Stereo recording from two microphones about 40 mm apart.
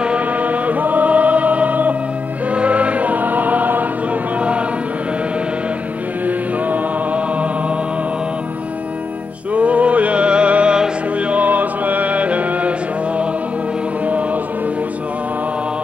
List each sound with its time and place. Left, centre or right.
0.2 s music: right
2.5 s choir: right
4.4 s chant: right
6.2 s mantra: right
9.5 s music: right
11.4 s music: right
14.0 s music: right